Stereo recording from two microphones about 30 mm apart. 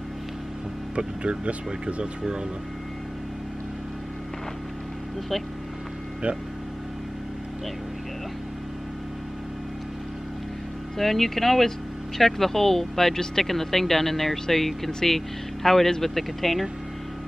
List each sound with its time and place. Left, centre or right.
0.9 s speech: right
6.2 s speech: right
11.0 s speech: centre